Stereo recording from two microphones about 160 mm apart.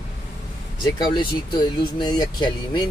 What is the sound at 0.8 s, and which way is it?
Speech, 30° left (ahead or behind).